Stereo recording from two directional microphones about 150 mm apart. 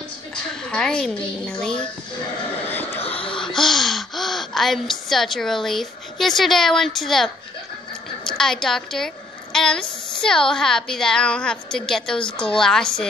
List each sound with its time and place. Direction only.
0.5 s a woman's voice: 5° left (ahead or behind)
2.7 s a sound: 15° left (ahead or behind)
3.1 s a woman's voice: 10° left (ahead or behind)